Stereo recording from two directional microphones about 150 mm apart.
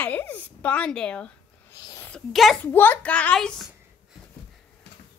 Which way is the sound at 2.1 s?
Centre (ahead or behind).